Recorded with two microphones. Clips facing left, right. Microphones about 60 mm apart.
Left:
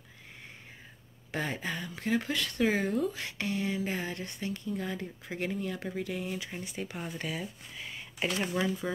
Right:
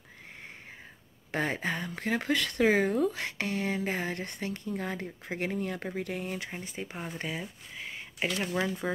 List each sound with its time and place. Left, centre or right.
1.3 s speech: right
6.5 s speech: right
6.8 s speech: centre
7.1 s speech: right